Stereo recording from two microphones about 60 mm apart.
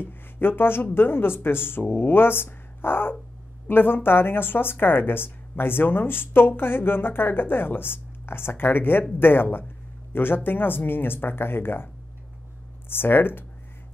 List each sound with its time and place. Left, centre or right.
0.0 s speech: left
12.9 s speech: left